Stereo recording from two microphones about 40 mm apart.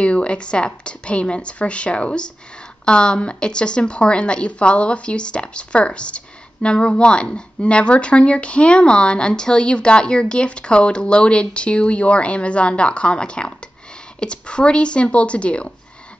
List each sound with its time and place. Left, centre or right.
0.0 s a woman's voice: left